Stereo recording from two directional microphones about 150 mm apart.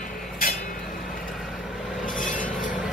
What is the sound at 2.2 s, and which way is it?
Train, 60° left (ahead or behind).